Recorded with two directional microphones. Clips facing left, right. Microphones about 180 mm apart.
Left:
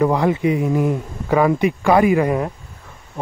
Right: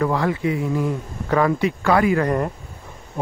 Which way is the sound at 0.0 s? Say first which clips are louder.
Left 4 dB; 20° left (ahead or behind).